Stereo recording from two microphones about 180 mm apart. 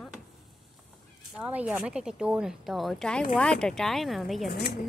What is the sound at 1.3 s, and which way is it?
Speech, 5° right (ahead or behind).